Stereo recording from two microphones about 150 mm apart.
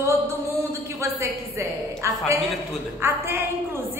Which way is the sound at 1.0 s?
20° right (ahead or behind).